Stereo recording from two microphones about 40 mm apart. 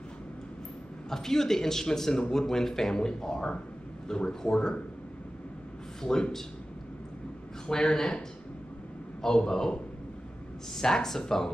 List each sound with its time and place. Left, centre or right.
1.1 s speech: centre
7.6 s speech: centre
9.2 s speech: centre
10.8 s speech: centre